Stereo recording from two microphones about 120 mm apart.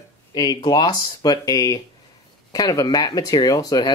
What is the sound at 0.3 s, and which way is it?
Speech, 35° left (ahead or behind).